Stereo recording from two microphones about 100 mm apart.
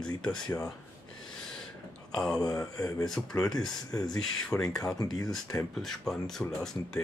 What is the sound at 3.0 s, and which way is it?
Speech, 5° left (ahead or behind).